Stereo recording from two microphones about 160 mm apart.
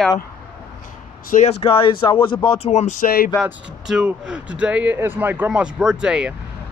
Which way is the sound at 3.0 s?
70° left (ahead or behind).